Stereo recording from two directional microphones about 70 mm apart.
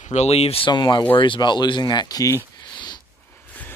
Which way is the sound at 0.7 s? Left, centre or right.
Left.